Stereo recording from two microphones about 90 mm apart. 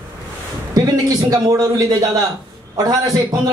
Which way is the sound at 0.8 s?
45° right (ahead or behind).